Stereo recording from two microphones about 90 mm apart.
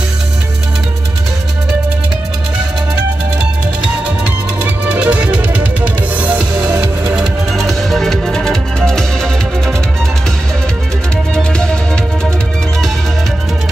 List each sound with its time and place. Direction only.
4.8 s music: 15° right (ahead or behind)
7.2 s music: centre (ahead or behind)
11.3 s music: 10° left (ahead or behind)